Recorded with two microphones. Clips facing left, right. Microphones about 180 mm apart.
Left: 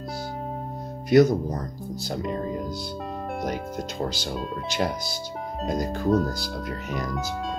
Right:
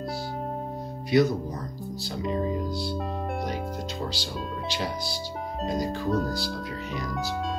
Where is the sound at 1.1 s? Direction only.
45° left (ahead or behind).